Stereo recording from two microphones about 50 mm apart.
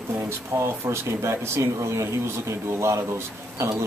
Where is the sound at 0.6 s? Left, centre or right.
Right.